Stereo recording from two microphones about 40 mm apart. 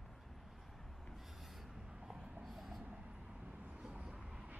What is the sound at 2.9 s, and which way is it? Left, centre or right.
Vehicle, right.